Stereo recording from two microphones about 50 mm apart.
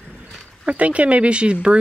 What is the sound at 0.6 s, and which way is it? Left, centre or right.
Speech, right.